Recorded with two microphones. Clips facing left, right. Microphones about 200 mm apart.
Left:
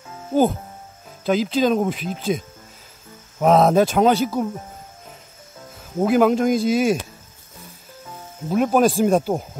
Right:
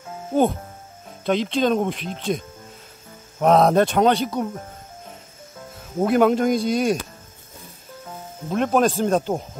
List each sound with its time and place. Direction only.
0.3 s speech: centre (ahead or behind)
5.9 s speech: centre (ahead or behind)
8.5 s speech: 5° left (ahead or behind)